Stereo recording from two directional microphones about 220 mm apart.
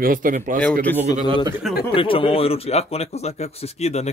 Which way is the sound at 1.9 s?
25° left (ahead or behind).